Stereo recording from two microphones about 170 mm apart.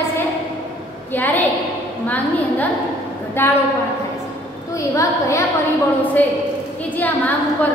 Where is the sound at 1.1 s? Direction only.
10° left (ahead or behind).